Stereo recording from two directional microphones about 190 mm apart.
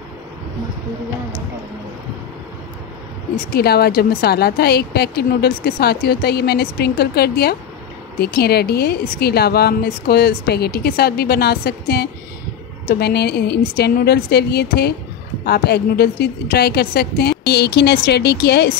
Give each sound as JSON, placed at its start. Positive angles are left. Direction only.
{"t": 3.5, "sound": "speech", "side_deg": 55}